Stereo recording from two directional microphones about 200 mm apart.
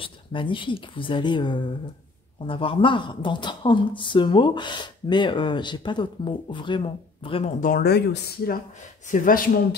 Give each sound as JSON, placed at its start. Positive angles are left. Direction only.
{"t": 0.0, "sound": "speech", "side_deg": 25}
{"t": 7.6, "sound": "speech", "side_deg": 50}